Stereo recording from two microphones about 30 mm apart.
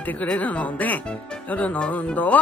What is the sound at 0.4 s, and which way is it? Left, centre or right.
Speech, left.